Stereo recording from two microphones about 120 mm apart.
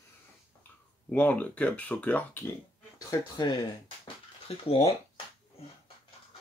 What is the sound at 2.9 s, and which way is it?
Speech, 35° left (ahead or behind).